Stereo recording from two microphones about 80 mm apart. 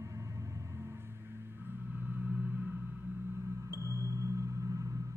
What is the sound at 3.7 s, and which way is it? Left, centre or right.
Music, right.